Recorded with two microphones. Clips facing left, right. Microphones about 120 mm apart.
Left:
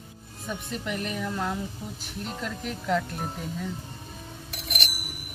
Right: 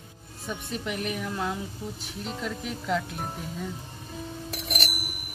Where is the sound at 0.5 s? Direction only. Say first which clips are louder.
Even; 5° right (ahead or behind).